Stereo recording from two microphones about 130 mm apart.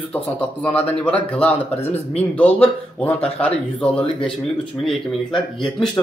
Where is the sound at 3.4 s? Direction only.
10° left (ahead or behind).